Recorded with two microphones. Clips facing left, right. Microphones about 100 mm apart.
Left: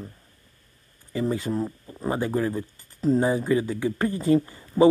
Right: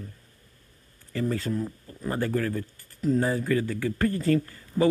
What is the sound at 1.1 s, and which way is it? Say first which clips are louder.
Speech: left 2 dB; 15° left (ahead or behind).